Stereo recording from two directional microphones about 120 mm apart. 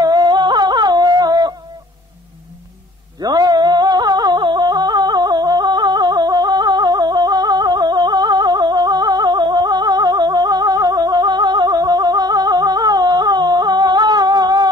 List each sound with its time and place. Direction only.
0.0 s music: 35° right (ahead or behind)
3.2 s music: 35° right (ahead or behind)